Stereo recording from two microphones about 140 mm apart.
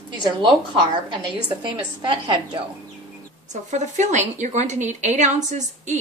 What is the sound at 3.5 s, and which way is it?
A woman's voice, 60° right (ahead or behind).